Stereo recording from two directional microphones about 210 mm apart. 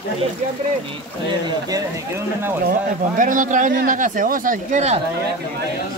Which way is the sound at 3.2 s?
40° right (ahead or behind).